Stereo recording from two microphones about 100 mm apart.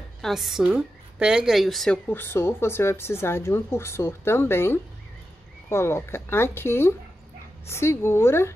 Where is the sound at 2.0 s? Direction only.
20° left (ahead or behind).